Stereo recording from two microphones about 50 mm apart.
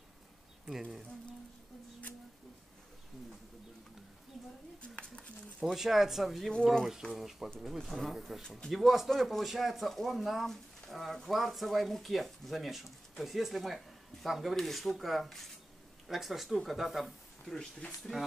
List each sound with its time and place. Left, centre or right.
0.7 s speech: centre
4.9 s speech: left
5.7 s speech: centre
18.1 s speech: centre